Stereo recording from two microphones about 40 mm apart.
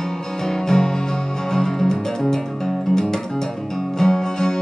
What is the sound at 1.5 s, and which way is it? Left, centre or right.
Music, centre.